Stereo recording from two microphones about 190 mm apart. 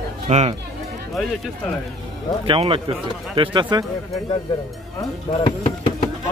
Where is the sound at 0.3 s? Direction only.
35° right (ahead or behind).